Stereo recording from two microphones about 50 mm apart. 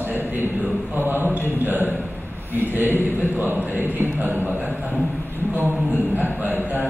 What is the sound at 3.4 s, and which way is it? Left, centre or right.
A man's voice, right.